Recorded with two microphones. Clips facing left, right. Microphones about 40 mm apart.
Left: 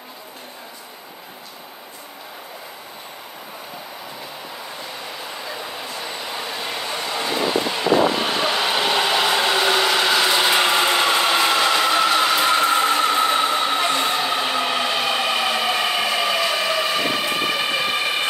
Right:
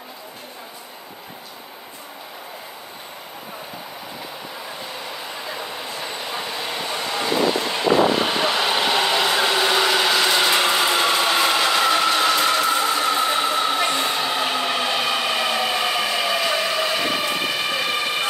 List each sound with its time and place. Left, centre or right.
5.4 s train: centre
10.8 s vehicle: centre
12.5 s vehicle: left
13.0 s a sound: centre